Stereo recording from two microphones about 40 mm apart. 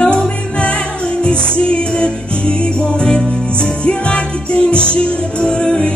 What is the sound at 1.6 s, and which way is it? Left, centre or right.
Music, left.